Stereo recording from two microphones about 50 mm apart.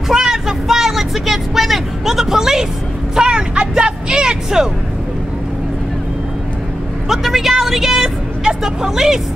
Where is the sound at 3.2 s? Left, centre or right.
Centre.